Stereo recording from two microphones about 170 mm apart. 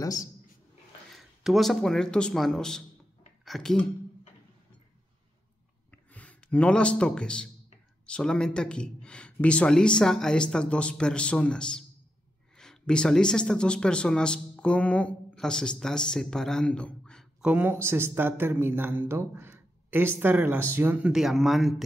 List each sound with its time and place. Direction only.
0.0 s speech: 20° left (ahead or behind)
1.1 s speech: centre (ahead or behind)
6.1 s speech: 10° left (ahead or behind)